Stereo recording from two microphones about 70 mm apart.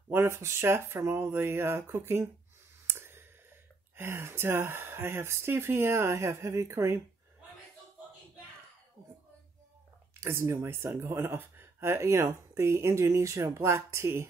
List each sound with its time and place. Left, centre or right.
0.1 s speech: right
2.9 s clicking: right
3.9 s speech: right
10.2 s speech: right